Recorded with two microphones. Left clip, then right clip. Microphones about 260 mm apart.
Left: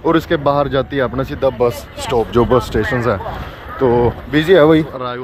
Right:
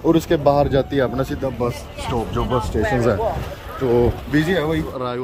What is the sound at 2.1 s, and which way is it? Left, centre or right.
Speech, left.